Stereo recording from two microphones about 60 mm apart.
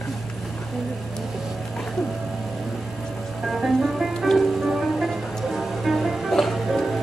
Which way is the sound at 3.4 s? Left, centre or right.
Centre.